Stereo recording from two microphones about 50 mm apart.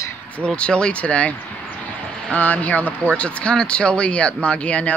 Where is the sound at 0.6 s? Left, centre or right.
Centre.